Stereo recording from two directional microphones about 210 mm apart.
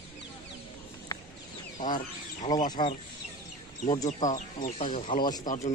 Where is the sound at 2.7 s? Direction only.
20° left (ahead or behind).